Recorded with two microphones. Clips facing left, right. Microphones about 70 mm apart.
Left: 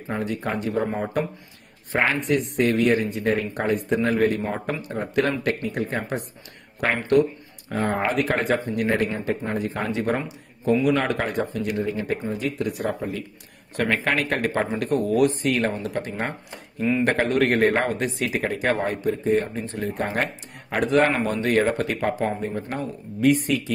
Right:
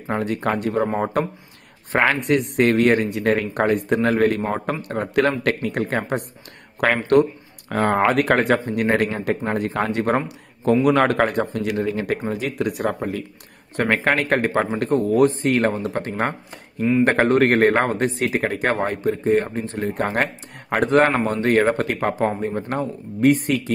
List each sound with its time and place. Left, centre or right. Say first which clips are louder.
0.1 s speech: right 4 dB; right
7.7 s speech: right 5 dB; right
11.6 s speech: right 3 dB; right
12.3 s speech: right 3 dB; right
13.7 s speech: right 3 dB; right